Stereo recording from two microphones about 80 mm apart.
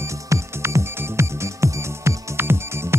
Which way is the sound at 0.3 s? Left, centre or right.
Right.